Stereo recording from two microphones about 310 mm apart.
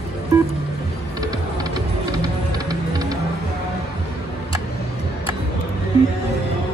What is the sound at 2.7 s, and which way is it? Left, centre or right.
Music, centre.